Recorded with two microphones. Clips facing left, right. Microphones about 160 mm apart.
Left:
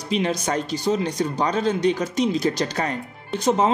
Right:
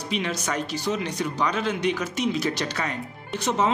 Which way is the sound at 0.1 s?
40° left (ahead or behind).